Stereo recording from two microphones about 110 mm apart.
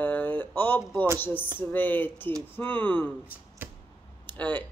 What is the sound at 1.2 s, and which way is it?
Speech, 20° left (ahead or behind).